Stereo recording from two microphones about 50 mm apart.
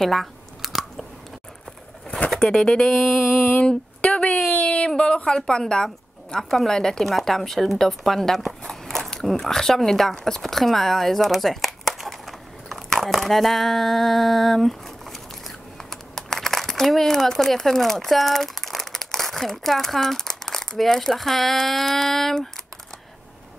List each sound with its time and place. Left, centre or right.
0.0 s chewing: centre
2.0 s bird: left
2.3 s speech: centre
3.3 s a sound: left
3.6 s a sound: left
4.5 s speech: left; by 22.5 s centre